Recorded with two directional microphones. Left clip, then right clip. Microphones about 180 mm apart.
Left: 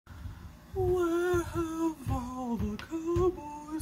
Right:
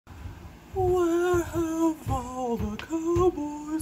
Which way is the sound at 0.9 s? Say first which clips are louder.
Right 4 dB; 5° right (ahead or behind).